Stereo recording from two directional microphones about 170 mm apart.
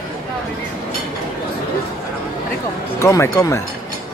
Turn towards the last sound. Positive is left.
turn(degrees=15)  # may be behind; listen again after turning